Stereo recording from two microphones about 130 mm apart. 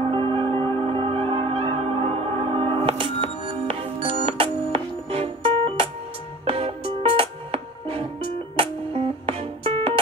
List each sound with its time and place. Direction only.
0.1 s music: 45° right (ahead or behind)